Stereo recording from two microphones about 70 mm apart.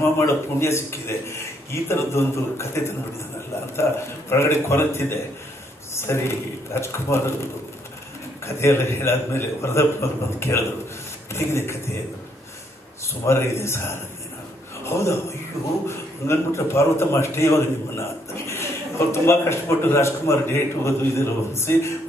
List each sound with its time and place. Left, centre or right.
0.0 s a man's voice: left
8.5 s a man's voice: left
13.2 s a man's voice: left